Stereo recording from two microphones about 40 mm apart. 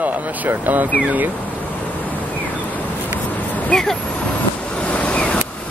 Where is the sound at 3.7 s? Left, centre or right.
Centre.